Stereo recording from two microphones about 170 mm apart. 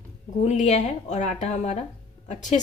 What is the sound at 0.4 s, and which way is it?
Speech, 45° left (ahead or behind).